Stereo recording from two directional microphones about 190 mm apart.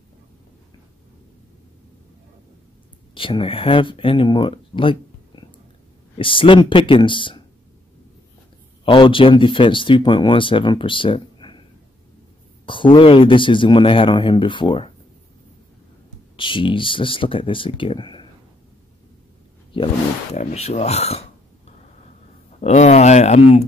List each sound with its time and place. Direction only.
3.2 s speech: 25° left (ahead or behind)
8.8 s speech: 25° left (ahead or behind)
12.6 s speech: 25° left (ahead or behind)
16.3 s speech: 25° left (ahead or behind)
20.3 s speech: 35° left (ahead or behind)
22.6 s speech: 35° left (ahead or behind)